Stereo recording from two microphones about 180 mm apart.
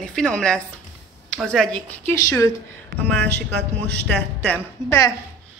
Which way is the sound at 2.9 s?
75° right (ahead or behind).